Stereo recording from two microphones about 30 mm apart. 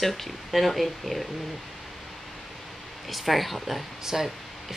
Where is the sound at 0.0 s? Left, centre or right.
Centre.